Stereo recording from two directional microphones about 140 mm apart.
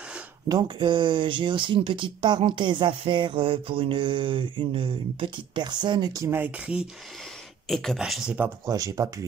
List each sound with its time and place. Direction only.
0.5 s speech: 35° right (ahead or behind); by 6.9 s 10° right (ahead or behind)
7.6 s speech: centre (ahead or behind)
8.6 s speech: 25° right (ahead or behind)